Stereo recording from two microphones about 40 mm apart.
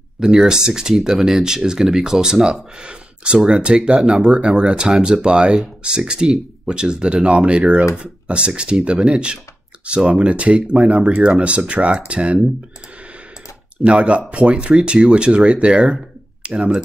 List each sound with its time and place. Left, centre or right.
0.2 s speech: centre
2.8 s speech: right
13.8 s speech: right